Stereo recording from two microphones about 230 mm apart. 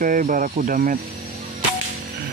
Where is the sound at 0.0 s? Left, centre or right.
Right.